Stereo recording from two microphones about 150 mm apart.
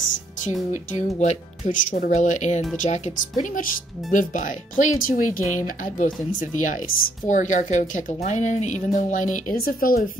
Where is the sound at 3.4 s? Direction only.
65° left (ahead or behind).